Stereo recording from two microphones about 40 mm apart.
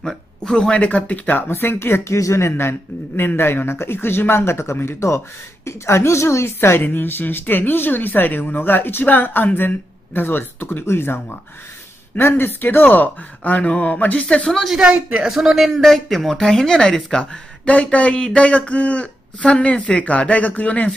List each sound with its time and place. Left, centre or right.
0.7 s speech: left
1.5 s speech: left
3.2 s speech: left
6.9 s speech: left
12.2 s speech: left
14.2 s speech: left
14.8 s speech: right
15.2 s a man's voice: centre
17.2 s speech: left